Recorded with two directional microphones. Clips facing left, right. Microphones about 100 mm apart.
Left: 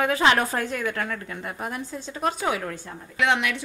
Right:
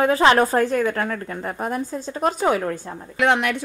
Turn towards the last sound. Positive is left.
turn(degrees=-45)  # may be behind; listen again after turning